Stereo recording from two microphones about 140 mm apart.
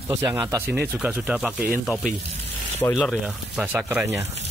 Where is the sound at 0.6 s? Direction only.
10° right (ahead or behind).